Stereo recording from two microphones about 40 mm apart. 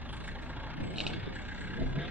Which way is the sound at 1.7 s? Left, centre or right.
Right.